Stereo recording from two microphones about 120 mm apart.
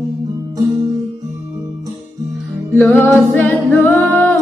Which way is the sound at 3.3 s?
15° left (ahead or behind).